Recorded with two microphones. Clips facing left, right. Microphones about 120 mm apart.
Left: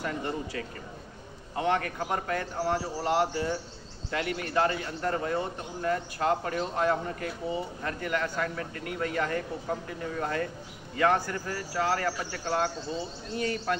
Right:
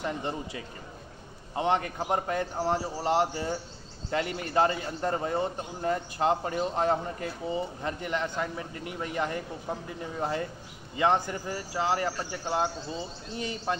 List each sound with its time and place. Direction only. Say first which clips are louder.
0.0 s a man's voice: even; 20° right (ahead or behind)